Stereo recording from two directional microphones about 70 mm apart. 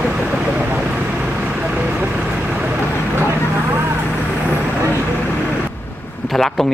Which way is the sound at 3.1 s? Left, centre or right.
Right.